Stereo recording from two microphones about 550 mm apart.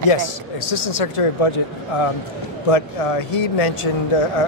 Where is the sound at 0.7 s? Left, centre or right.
Left.